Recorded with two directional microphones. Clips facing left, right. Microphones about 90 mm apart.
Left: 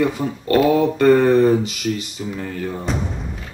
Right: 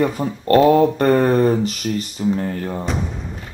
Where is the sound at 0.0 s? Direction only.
40° right (ahead or behind).